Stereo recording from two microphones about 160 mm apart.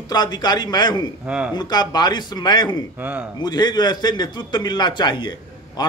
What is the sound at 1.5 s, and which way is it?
A man's voice, 25° left (ahead or behind).